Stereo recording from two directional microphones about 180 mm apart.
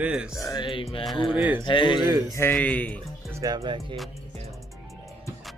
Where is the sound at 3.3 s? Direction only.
15° right (ahead or behind).